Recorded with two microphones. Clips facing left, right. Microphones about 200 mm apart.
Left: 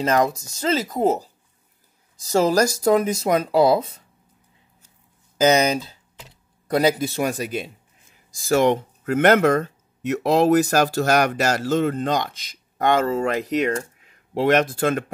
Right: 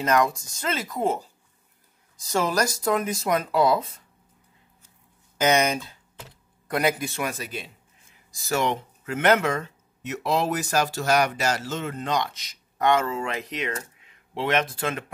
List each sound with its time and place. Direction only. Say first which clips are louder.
0.0 s speech: left 2 dB; 25° left (ahead or behind)
0.7 s speech: left 6 dB; 40° left (ahead or behind)
5.4 s speech: left 4 dB; 35° left (ahead or behind)
7.2 s speech: left 7 dB; 40° left (ahead or behind)